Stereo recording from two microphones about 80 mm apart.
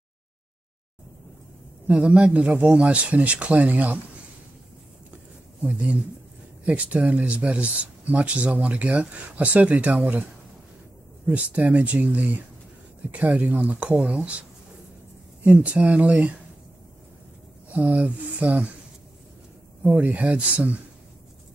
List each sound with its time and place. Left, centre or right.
1.9 s speech: centre
5.6 s speech: centre
11.2 s speech: centre
15.4 s speech: centre
17.6 s speech: centre
19.8 s speech: centre